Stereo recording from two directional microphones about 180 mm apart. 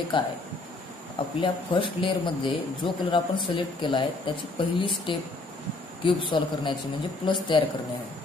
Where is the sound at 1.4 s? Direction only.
25° left (ahead or behind).